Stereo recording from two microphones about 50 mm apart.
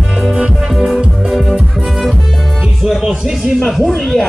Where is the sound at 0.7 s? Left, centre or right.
Centre.